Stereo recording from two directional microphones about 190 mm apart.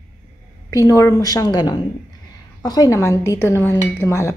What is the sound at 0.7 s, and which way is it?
A woman's voice, 15° left (ahead or behind).